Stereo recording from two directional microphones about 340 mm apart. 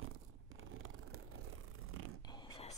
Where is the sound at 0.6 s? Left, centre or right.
Right.